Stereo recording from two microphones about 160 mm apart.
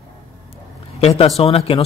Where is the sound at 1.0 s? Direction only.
35° left (ahead or behind).